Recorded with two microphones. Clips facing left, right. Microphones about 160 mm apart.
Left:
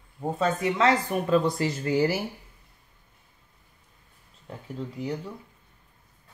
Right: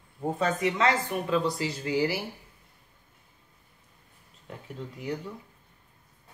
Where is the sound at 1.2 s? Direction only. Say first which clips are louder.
Left 5 dB; 50° left (ahead or behind).